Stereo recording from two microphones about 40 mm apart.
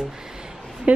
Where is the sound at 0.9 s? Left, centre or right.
Right.